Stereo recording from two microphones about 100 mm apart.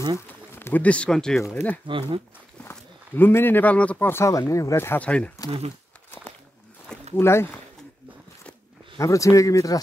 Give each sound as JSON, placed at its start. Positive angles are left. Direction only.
{"t": 0.3, "sound": "speech", "side_deg": 20}
{"t": 1.5, "sound": "speech", "side_deg": 15}
{"t": 1.9, "sound": "speech", "side_deg": -60}
{"t": 2.6, "sound": "speech", "side_deg": 20}
{"t": 4.3, "sound": "speech", "side_deg": 35}
{"t": 5.0, "sound": "speech", "side_deg": 15}
{"t": 7.2, "sound": "speech", "side_deg": 25}
{"t": 9.0, "sound": "speech", "side_deg": 30}